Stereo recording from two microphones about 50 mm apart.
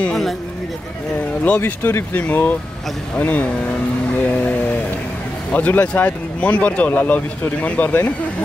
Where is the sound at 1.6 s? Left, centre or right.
Left.